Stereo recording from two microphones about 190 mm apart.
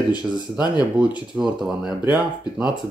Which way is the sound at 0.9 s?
5° right (ahead or behind).